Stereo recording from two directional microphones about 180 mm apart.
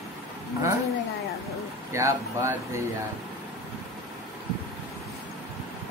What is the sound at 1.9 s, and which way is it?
Speech, 15° right (ahead or behind).